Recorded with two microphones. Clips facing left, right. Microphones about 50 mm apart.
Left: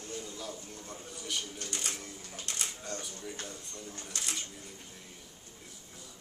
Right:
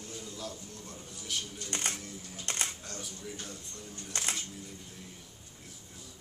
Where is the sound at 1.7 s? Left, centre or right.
Right.